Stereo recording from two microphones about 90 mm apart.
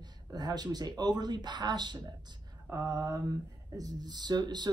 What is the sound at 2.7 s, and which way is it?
Speech, 40° right (ahead or behind).